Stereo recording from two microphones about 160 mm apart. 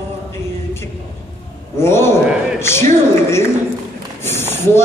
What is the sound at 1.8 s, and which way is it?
Speech, 15° left (ahead or behind).